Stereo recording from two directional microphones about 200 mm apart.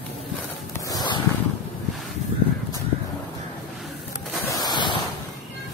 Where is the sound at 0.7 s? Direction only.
20° left (ahead or behind).